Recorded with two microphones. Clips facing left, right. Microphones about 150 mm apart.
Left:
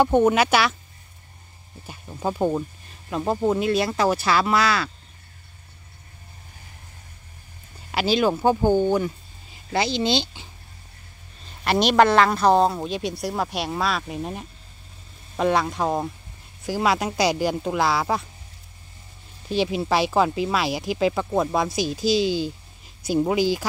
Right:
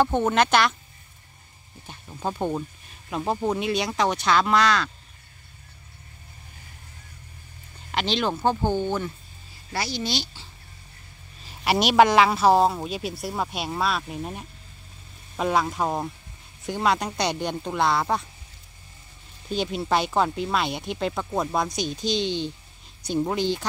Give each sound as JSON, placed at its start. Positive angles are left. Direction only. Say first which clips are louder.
{"t": 0.0, "sound": "speech", "louder": "left 3 dB", "side_deg": 15}
{"t": 1.9, "sound": "speech", "louder": "left 3 dB", "side_deg": 5}
{"t": 7.9, "sound": "speech", "louder": "left 5 dB", "side_deg": 5}
{"t": 9.8, "sound": "speech", "louder": "left 6 dB", "side_deg": 25}
{"t": 11.4, "sound": "speech", "louder": "left 2 dB", "side_deg": -5}
{"t": 19.5, "sound": "speech", "louder": "left 2 dB", "side_deg": 0}